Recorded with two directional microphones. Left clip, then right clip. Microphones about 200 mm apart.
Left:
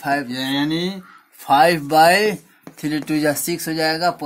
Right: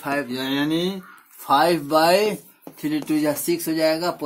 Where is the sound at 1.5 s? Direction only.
50° left (ahead or behind).